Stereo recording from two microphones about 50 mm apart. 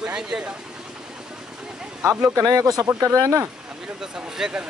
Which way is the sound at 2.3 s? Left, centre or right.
Right.